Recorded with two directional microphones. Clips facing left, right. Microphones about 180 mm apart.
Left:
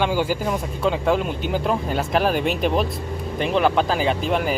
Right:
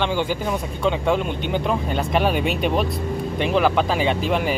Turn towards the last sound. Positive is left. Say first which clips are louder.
# even
turn(degrees=0)  # may be behind; listen again after turning